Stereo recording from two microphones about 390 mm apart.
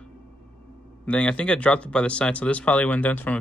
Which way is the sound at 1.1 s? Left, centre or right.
Centre.